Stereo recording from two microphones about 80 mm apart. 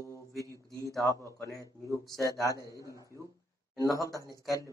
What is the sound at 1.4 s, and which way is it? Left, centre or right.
Speech, left.